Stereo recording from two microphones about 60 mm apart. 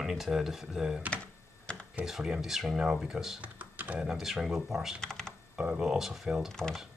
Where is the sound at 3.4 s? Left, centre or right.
Right.